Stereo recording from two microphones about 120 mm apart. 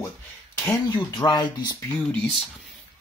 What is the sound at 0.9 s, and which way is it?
Speech, 35° left (ahead or behind).